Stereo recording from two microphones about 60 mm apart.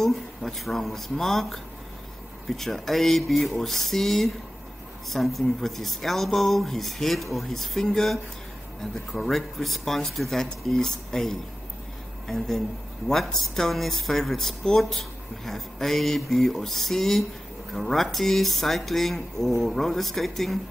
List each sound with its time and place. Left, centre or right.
0.0 s speech: centre